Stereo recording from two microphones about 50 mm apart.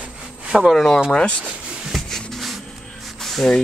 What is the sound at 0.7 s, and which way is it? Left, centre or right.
Speech, centre.